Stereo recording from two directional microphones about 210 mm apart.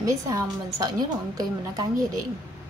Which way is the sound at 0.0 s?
15° right (ahead or behind).